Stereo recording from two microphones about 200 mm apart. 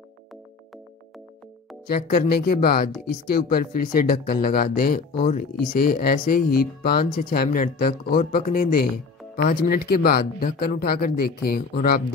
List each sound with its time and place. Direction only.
1.9 s speech: 50° left (ahead or behind)